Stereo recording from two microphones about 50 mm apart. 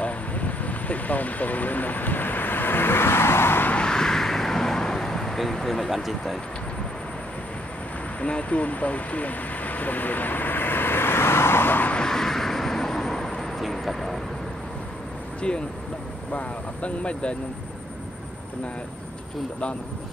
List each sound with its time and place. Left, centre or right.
0.0 s vehicle: left
3.7 s vehicle: centre
8.2 s vehicle: left
11.9 s vehicle: centre
15.4 s speech: centre